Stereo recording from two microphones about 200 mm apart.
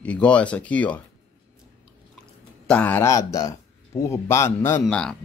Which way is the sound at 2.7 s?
10° left (ahead or behind).